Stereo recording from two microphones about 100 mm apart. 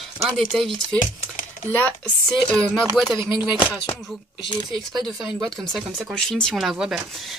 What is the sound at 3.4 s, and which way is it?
Speech, 15° right (ahead or behind).